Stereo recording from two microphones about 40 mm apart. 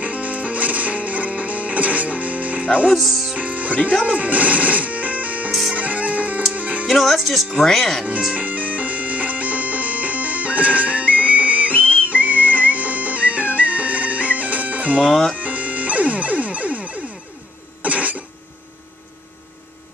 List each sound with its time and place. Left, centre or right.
0.0 s music: right
2.6 s speech: right
2.9 s speech: centre
3.3 s speech: right
5.8 s bagpipes: right
6.5 s music: right
6.9 s speech: centre
8.4 s music: right
11.2 s whistle: right
12.1 s music: right
15.0 s speech: centre
15.3 s music: right
17.8 s cough: right